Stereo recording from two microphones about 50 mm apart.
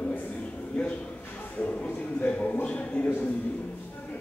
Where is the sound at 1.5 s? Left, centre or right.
Left.